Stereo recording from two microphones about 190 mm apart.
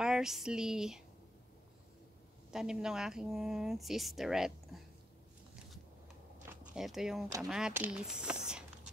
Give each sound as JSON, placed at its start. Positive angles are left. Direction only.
{"t": 0.0, "sound": "speech", "side_deg": -5}
{"t": 2.5, "sound": "speech", "side_deg": -5}
{"t": 6.5, "sound": "speech", "side_deg": -5}